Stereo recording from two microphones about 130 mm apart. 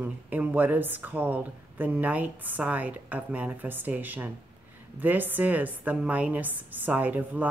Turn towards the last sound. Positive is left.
turn(degrees=-10)  # may be behind; listen again after turning